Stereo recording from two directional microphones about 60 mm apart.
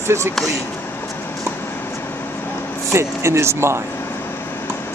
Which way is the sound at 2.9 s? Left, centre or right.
Right.